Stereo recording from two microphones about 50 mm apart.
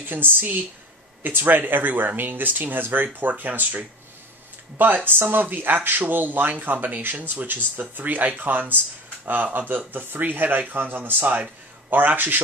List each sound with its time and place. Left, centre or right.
0.0 s a woman's voice: right